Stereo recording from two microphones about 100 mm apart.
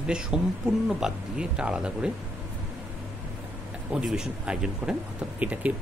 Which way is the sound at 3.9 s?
5° right (ahead or behind).